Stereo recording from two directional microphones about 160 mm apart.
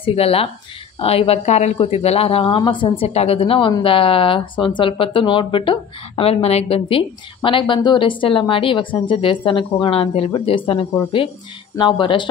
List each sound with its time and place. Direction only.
0.0 s a woman's voice: 35° left (ahead or behind)